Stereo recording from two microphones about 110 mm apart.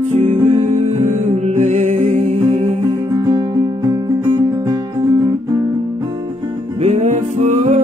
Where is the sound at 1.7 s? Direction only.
90° right.